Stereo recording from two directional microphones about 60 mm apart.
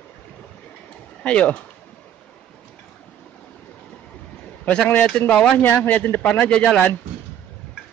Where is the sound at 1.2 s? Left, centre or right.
Left.